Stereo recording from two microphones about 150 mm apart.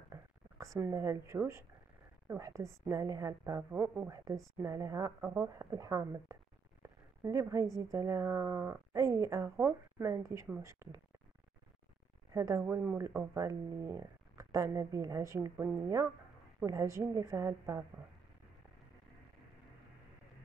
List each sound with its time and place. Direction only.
0.1 s a sound: 20° right (ahead or behind)
2.2 s speech: 20° right (ahead or behind)
12.3 s a woman's voice: 20° right (ahead or behind)